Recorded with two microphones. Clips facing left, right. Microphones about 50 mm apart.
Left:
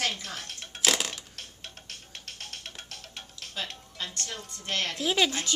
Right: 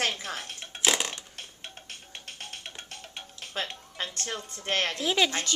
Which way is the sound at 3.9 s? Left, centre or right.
Right.